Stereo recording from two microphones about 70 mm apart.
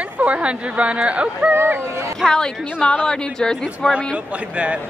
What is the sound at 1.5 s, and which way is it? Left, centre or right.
Speech, right.